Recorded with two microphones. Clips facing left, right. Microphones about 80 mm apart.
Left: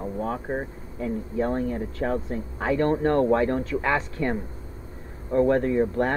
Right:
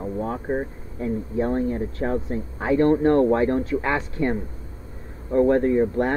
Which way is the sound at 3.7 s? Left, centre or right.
Centre.